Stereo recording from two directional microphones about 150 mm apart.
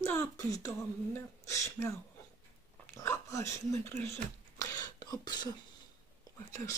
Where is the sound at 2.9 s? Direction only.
20° left (ahead or behind).